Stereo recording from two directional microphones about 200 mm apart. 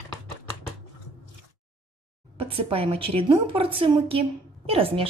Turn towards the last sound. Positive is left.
turn(degrees=-30)  # may be behind; listen again after turning